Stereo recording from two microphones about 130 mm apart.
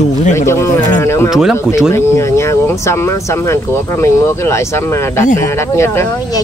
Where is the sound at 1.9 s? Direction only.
20° left (ahead or behind).